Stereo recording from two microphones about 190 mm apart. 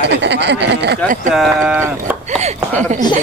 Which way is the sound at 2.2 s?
35° right (ahead or behind).